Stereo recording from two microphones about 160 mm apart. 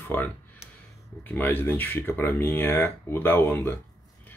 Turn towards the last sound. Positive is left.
turn(degrees=15)  # may be behind; listen again after turning